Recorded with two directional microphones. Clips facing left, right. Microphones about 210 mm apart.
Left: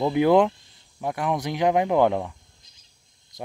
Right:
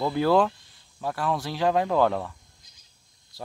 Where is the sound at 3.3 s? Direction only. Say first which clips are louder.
Left 3 dB; 20° left (ahead or behind).